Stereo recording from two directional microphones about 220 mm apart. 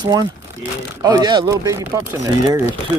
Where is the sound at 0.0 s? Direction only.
20° right (ahead or behind).